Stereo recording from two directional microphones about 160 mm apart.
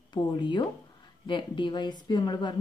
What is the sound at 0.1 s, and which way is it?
A woman's voice, 30° left (ahead or behind).